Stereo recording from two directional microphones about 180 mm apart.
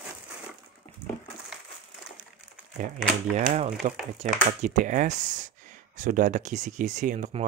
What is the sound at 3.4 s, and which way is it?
Speech, 35° right (ahead or behind).